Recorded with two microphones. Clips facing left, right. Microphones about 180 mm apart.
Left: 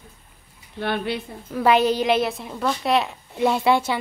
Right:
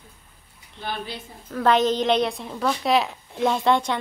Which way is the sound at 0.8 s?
65° left (ahead or behind).